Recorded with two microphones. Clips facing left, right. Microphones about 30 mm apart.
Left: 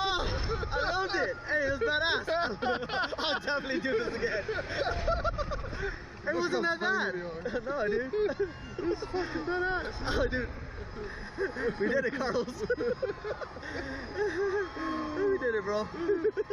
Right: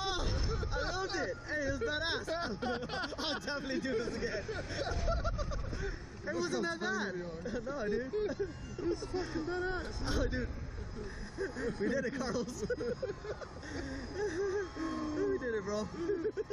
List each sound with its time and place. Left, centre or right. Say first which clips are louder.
0.0 s speech: left 6 dB; left